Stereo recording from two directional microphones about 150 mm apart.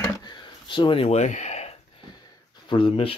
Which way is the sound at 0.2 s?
30° left (ahead or behind).